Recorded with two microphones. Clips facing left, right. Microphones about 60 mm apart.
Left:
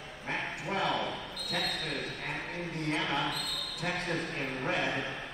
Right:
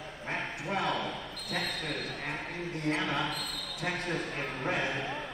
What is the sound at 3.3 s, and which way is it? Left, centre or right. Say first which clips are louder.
Speech: left 1 dB; left.